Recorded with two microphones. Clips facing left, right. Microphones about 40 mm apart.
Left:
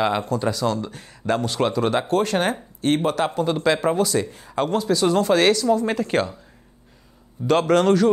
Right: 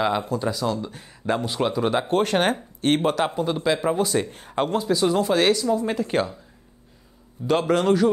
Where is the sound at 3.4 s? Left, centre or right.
Left.